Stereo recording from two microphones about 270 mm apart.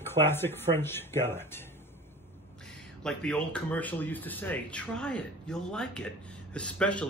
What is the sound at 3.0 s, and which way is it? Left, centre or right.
Speech, centre.